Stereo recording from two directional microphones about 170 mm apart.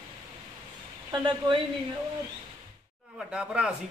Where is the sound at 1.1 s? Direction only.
25° right (ahead or behind).